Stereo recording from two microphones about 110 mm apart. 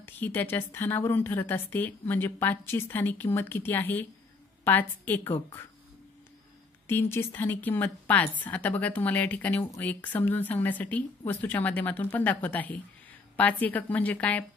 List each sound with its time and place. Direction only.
0.0 s a woman's voice: 20° left (ahead or behind)
6.9 s a woman's voice: 20° left (ahead or behind)